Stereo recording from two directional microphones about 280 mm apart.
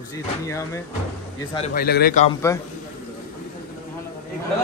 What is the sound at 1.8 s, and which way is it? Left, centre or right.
Speech, left.